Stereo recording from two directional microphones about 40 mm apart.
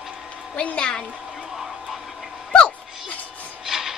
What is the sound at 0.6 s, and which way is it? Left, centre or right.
Speech, left.